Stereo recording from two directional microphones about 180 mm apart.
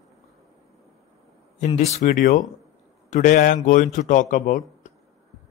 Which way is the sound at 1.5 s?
40° left (ahead or behind).